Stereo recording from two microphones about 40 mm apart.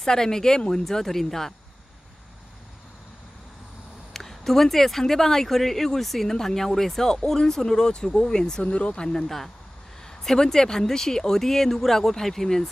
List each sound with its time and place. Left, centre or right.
0.0 s speech: centre
0.8 s speech: centre
4.1 s speech: centre
8.6 s speech: left
10.0 s speech: centre